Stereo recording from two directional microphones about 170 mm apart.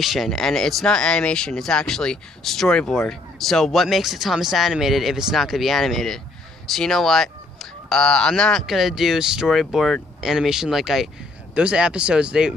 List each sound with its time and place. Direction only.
0.0 s speech: centre (ahead or behind)